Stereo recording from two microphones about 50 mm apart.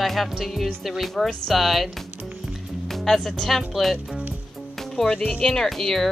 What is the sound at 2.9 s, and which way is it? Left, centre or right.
Speech, centre.